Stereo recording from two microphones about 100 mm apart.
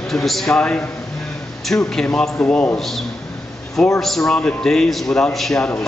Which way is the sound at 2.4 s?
15° left (ahead or behind).